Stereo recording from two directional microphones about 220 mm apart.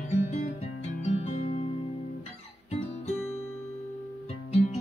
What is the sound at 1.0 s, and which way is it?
Music, 25° left (ahead or behind).